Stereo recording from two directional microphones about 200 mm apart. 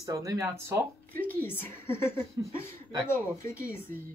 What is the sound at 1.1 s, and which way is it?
Speech, 10° left (ahead or behind).